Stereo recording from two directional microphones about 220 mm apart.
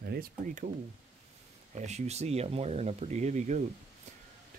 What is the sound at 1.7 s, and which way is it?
Speech, 30° right (ahead or behind).